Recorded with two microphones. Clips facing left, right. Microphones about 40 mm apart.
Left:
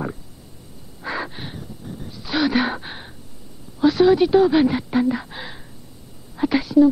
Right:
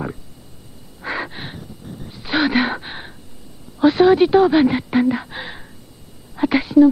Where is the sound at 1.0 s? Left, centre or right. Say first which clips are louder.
Right 2 dB; right.